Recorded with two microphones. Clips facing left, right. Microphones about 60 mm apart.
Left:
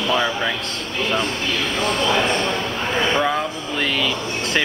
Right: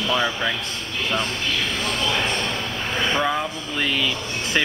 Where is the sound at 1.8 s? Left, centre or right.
Left.